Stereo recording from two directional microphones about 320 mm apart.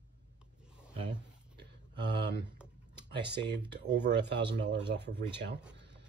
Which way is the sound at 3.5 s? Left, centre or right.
Right.